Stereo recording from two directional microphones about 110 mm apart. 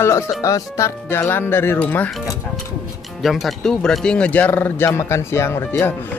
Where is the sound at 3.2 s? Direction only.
Centre (ahead or behind).